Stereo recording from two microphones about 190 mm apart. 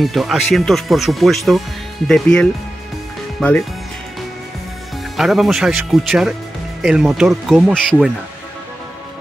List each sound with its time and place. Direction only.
0.0 s speech: centre (ahead or behind)
5.1 s speech: centre (ahead or behind)